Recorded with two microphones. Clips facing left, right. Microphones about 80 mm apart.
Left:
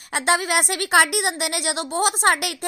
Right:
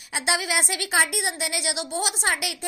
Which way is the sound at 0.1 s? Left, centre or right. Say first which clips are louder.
Left 5 dB; left.